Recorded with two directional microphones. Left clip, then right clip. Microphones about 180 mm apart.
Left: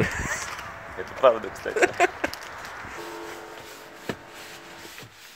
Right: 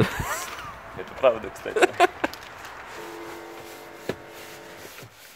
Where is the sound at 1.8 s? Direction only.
25° right (ahead or behind).